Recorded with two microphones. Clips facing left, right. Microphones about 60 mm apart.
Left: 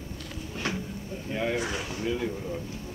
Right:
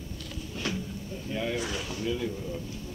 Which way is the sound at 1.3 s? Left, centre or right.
Left.